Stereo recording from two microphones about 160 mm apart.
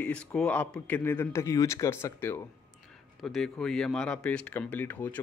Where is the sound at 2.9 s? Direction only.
5° left (ahead or behind).